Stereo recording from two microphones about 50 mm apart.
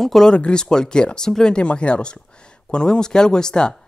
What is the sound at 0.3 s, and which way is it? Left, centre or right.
Speech, centre.